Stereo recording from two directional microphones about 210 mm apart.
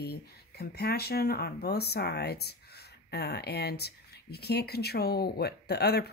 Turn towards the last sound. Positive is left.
turn(degrees=50)  # may be behind; listen again after turning